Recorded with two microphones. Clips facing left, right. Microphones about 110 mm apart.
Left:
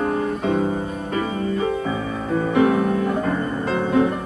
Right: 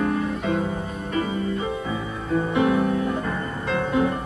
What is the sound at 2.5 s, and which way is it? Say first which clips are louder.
Music: left 4 dB; 40° left (ahead or behind).